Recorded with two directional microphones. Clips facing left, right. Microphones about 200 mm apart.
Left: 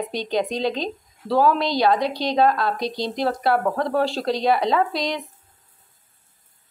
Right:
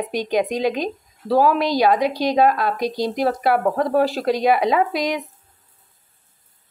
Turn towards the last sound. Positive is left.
turn(degrees=-10)  # may be behind; listen again after turning